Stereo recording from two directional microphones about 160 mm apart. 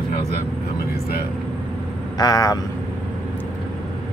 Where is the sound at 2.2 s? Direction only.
25° left (ahead or behind).